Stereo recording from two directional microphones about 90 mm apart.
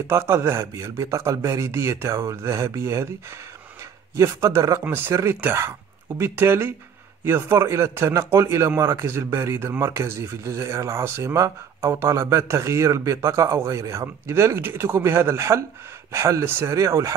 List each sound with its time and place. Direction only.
0.1 s a man's voice: 30° right (ahead or behind)
4.1 s a man's voice: 35° right (ahead or behind)